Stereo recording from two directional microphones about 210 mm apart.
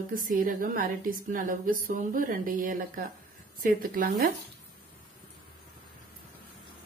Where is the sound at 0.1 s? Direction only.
40° right (ahead or behind).